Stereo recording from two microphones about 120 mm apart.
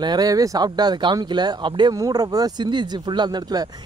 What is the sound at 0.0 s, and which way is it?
Speech, 35° right (ahead or behind).